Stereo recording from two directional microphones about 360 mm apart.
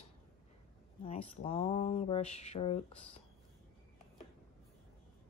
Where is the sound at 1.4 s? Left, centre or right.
Centre.